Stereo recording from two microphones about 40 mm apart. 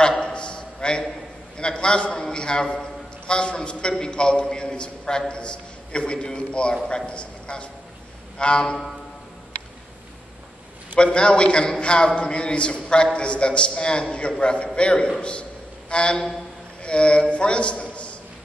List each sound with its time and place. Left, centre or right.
0.2 s a sound: left
1.6 s a man's voice: left
11.0 s a man's voice: left